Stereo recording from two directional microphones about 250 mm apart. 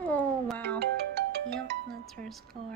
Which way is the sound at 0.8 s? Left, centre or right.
Right.